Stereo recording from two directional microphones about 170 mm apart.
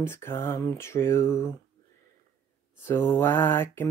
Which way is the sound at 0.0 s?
15° left (ahead or behind).